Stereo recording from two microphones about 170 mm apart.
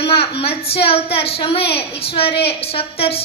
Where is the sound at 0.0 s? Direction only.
35° left (ahead or behind).